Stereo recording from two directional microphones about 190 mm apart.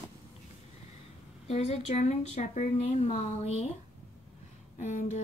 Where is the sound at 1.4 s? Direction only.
35° left (ahead or behind).